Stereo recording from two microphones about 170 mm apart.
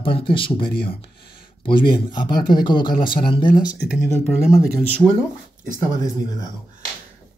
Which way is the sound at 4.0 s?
15° left (ahead or behind).